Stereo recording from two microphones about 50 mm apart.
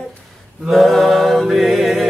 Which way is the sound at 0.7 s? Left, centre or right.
Centre.